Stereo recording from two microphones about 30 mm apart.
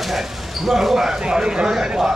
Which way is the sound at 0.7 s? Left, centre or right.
Centre.